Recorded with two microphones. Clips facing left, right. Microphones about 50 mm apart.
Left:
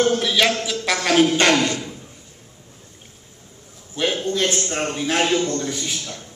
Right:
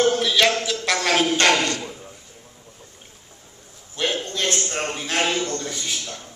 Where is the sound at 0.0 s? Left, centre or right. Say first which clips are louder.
Even; centre.